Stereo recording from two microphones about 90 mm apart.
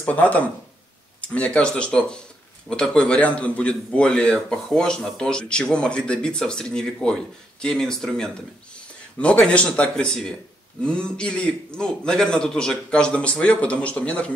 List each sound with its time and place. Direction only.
0.0 s a man's voice: 15° left (ahead or behind)